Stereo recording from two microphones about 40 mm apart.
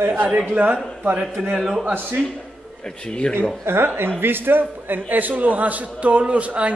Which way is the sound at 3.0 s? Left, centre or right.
Left.